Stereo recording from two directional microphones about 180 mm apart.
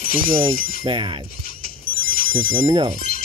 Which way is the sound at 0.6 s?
50° left (ahead or behind).